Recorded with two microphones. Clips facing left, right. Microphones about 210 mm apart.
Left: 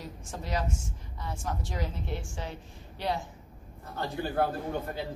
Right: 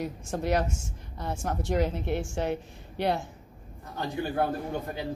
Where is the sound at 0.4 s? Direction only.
65° right (ahead or behind).